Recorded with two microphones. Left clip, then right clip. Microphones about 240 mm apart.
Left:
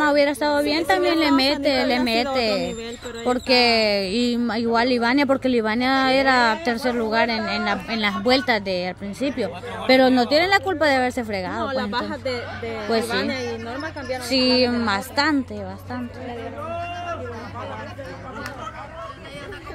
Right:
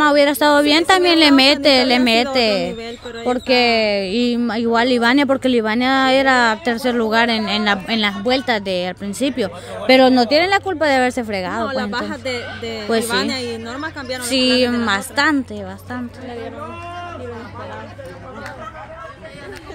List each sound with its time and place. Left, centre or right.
0.0 s a woman's voice: centre
8.1 s speech: centre; by 12.4 s right
13.1 s speech: right
14.2 s speech: centre